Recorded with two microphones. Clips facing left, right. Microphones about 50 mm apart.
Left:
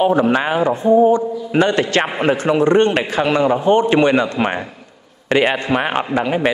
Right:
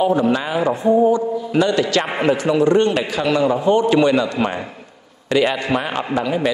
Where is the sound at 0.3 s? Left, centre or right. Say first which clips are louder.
Left 2 dB; left.